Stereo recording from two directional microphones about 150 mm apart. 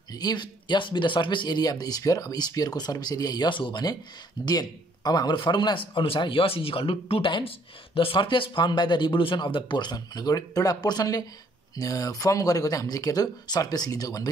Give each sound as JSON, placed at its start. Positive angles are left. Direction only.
{"t": 0.1, "sound": "a man's voice", "side_deg": 25}